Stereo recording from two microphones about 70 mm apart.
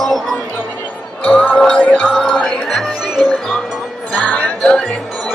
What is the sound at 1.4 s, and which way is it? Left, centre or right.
Music, left.